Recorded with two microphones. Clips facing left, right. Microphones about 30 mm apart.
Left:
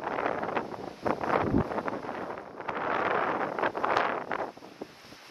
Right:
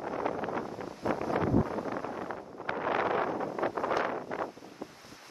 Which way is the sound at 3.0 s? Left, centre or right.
Left.